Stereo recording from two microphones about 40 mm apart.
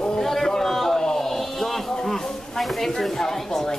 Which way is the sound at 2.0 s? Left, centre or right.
Centre.